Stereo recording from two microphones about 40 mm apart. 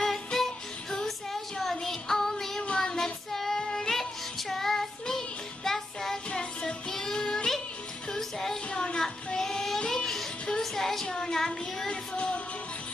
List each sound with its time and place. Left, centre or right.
0.0 s music: centre
2.8 s child singing: centre
7.2 s child singing: left
8.1 s music: centre
8.7 s child singing: left
9.0 s child singing: centre
9.8 s music: centre
10.6 s a sound: centre
11.1 s child singing: centre
11.9 s music: left